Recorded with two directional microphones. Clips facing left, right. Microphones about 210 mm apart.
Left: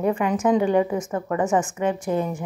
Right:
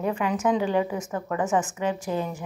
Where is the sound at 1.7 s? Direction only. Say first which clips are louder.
Left 4 dB; 50° left (ahead or behind).